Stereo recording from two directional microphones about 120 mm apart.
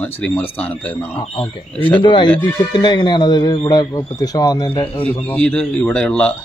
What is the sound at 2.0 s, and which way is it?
A man's voice, 45° left (ahead or behind).